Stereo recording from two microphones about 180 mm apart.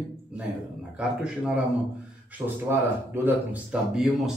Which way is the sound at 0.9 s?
5° right (ahead or behind).